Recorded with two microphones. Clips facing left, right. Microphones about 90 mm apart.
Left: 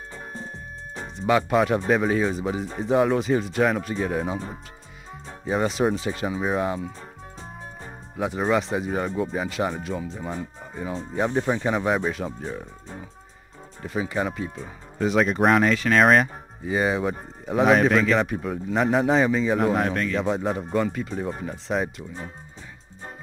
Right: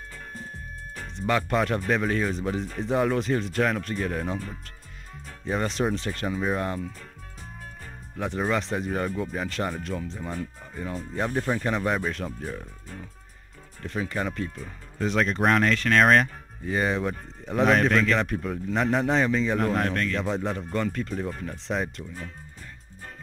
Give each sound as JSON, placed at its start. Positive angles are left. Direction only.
{"t": 1.1, "sound": "speech", "side_deg": 5}
{"t": 5.4, "sound": "speech", "side_deg": 5}
{"t": 8.2, "sound": "speech", "side_deg": 5}
{"t": 13.8, "sound": "speech", "side_deg": 5}